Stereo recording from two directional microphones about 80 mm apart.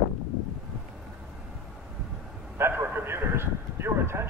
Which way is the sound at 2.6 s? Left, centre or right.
Right.